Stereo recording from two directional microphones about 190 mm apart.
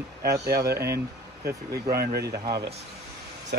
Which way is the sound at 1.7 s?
55° right (ahead or behind).